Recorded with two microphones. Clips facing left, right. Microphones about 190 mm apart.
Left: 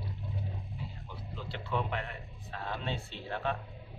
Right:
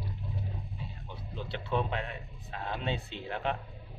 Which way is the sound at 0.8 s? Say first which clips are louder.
Right 1 dB; 20° right (ahead or behind).